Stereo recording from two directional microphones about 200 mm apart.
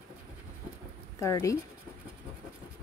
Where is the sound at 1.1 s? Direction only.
15° left (ahead or behind).